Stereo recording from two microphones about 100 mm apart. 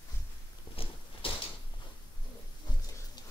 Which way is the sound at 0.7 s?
70° left (ahead or behind).